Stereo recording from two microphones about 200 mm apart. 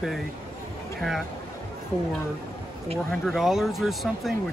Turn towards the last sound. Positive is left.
turn(degrees=0)  # may be behind; listen again after turning